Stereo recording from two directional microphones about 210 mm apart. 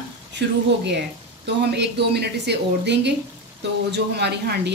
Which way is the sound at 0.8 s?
55° right (ahead or behind).